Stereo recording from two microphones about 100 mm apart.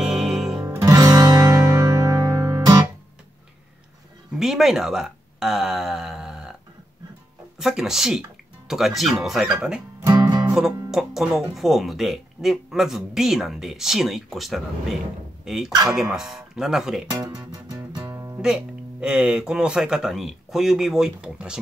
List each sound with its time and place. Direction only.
0.0 s music: 5° right (ahead or behind)
0.7 s music: 35° right (ahead or behind)
4.3 s speech: 5° right (ahead or behind)
7.5 s speech: 5° right (ahead or behind)
10.0 s music: 45° right (ahead or behind)
10.5 s a man's voice: 5° right (ahead or behind)
17.1 s speech: 35° right (ahead or behind)
18.0 s music: 25° right (ahead or behind)
18.4 s a man's voice: 5° right (ahead or behind)